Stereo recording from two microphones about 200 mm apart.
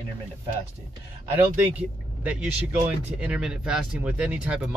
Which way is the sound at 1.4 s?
5° right (ahead or behind).